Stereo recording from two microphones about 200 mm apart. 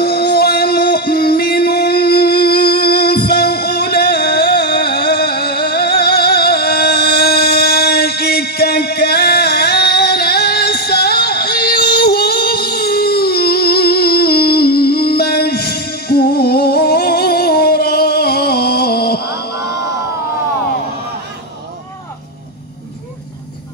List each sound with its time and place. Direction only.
0.0 s music: 50° left (ahead or behind)